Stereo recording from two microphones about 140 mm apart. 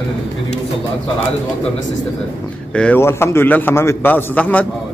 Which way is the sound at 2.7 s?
10° left (ahead or behind).